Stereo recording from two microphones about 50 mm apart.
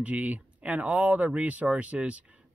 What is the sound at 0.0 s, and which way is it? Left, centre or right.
Speech, right.